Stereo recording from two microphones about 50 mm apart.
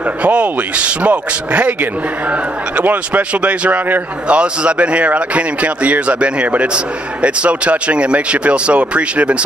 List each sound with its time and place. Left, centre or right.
0.2 s a man's voice: right